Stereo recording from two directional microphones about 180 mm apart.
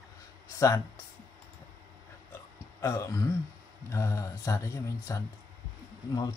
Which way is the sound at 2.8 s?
20° left (ahead or behind).